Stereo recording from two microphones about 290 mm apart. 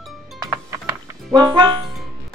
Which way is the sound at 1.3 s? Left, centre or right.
Centre.